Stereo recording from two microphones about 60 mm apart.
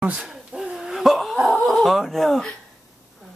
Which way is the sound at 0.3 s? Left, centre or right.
Centre.